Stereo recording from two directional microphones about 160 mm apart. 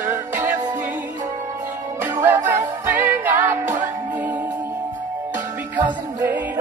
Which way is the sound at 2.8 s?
10° right (ahead or behind).